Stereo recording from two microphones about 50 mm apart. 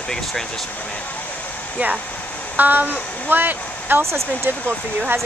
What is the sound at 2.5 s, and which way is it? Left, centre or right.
Speech, right.